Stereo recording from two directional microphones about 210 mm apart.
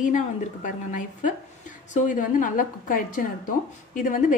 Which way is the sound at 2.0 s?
40° left (ahead or behind).